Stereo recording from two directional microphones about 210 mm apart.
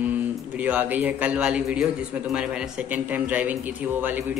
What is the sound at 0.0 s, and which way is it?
Speech, 5° right (ahead or behind).